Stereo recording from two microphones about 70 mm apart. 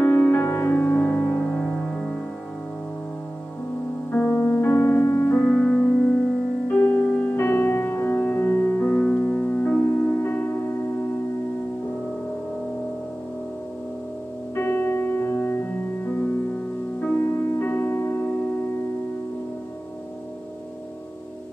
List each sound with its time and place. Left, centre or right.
0.0 s music: left
1.4 s music: centre
4.1 s music: left
5.5 s piano: centre
7.1 s music: centre
7.3 s music: left
8.9 s music: centre
14.5 s music: left